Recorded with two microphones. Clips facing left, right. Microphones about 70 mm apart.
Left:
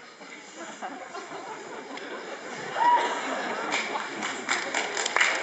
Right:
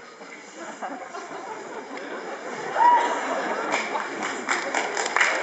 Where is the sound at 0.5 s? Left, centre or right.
Centre.